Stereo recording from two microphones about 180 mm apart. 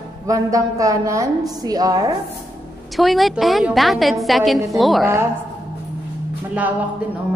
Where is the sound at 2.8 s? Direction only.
Centre (ahead or behind).